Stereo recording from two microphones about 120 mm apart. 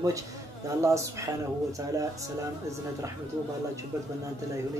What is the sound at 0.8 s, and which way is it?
Speech, 25° right (ahead or behind).